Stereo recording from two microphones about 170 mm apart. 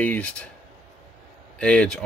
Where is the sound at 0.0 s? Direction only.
10° left (ahead or behind).